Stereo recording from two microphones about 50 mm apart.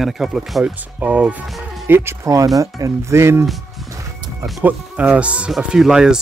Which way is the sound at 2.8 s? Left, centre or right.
Right.